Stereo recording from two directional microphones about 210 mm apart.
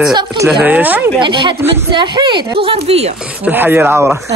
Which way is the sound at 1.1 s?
25° right (ahead or behind).